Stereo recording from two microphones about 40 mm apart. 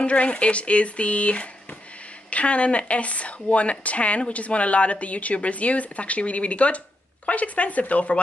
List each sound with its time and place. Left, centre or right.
0.0 s speech: left